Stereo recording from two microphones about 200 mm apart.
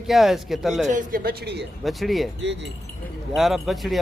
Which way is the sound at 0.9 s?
40° right (ahead or behind).